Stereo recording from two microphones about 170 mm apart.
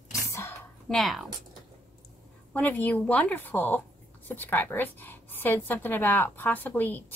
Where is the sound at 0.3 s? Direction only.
15° left (ahead or behind).